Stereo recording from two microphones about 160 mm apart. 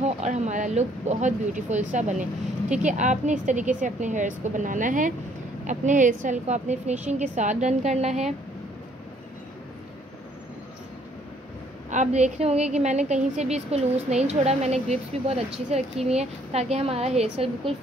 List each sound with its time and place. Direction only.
0.0 s a woman's voice: 45° right (ahead or behind)
11.9 s a woman's voice: 45° right (ahead or behind)